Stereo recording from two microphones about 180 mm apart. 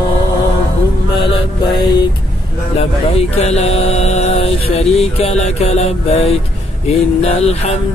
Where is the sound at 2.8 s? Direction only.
35° left (ahead or behind).